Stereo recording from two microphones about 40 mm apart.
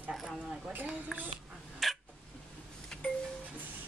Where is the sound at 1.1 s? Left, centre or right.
Right.